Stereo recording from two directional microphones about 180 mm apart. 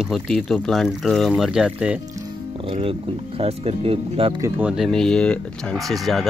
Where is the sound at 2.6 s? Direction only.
30° right (ahead or behind).